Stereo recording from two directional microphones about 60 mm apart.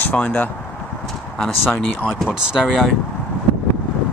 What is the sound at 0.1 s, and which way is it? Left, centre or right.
Speech, left.